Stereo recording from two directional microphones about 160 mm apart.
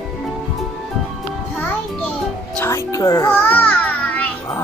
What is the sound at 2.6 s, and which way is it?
Music, 20° left (ahead or behind).